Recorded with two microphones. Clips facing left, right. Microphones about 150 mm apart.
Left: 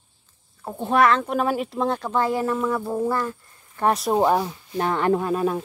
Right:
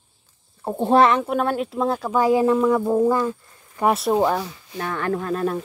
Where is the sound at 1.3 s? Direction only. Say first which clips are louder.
Right 1 dB; centre (ahead or behind); by 3.3 s 15° right (ahead or behind).